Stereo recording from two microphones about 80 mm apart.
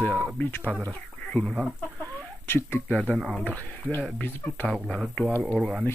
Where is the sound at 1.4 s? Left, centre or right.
Centre.